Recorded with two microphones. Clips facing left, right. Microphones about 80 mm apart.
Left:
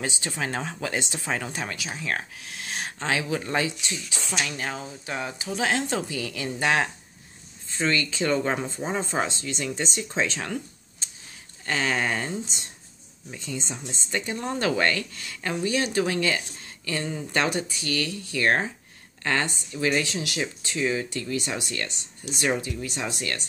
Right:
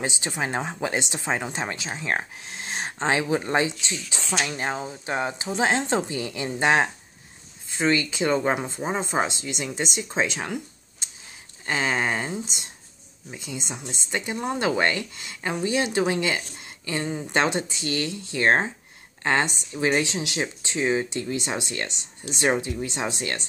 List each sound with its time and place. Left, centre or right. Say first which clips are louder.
0.0 s speech: right 2 dB; right
11.6 s speech: right 1 dB; centre